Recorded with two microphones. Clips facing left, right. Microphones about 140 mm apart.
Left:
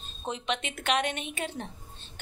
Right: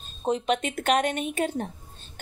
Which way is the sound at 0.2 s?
45° right (ahead or behind).